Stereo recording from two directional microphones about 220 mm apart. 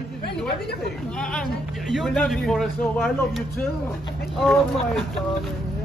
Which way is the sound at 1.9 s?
Centre (ahead or behind).